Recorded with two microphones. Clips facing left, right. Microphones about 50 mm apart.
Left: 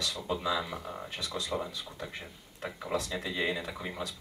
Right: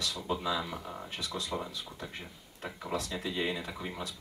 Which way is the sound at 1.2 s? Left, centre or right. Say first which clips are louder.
Left 1 dB; centre.